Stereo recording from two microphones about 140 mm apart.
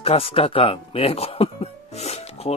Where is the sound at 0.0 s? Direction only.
45° left (ahead or behind).